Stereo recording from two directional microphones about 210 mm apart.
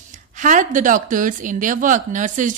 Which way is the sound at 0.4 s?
40° right (ahead or behind).